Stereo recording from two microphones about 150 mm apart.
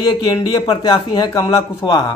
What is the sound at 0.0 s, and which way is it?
A man's voice, 30° left (ahead or behind).